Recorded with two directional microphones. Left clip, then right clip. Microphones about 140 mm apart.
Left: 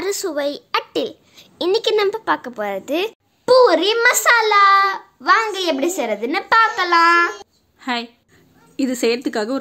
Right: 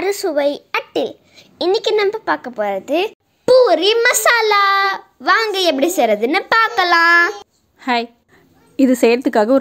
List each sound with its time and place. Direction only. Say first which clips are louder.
0.0 s a woman's voice: right 5 dB; 5° right (ahead or behind)
3.4 s a child's voice: right 1 dB; 25° right (ahead or behind); by 7.3 s 45° right (ahead or behind)
7.8 s a woman's voice: right 6 dB; 20° right (ahead or behind)